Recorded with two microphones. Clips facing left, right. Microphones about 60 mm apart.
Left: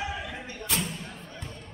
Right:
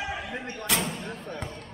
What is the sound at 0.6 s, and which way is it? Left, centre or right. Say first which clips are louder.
Slam: right 3 dB; right.